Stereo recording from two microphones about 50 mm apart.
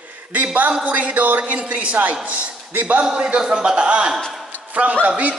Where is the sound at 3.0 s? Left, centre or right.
Centre.